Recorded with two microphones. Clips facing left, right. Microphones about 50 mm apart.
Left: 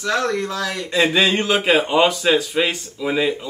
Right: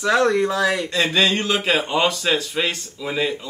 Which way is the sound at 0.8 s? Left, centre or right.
Centre.